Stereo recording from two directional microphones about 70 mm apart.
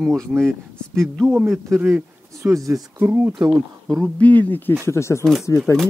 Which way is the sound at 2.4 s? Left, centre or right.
Right.